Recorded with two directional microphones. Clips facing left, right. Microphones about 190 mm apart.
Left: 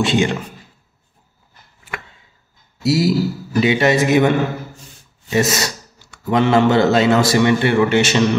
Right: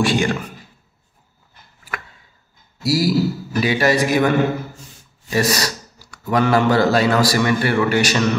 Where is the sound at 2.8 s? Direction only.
25° left (ahead or behind).